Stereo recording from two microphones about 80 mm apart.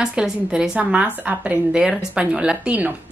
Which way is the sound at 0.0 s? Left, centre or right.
Centre.